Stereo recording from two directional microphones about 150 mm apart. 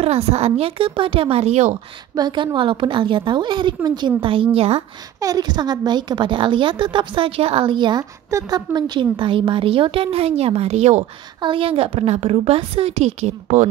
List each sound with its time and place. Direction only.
0.0 s a woman's voice: 40° right (ahead or behind)
2.1 s a woman's voice: 30° right (ahead or behind)
5.2 s a woman's voice: 25° right (ahead or behind); by 11.1 s 50° right (ahead or behind)
11.4 s a woman's voice: 35° right (ahead or behind)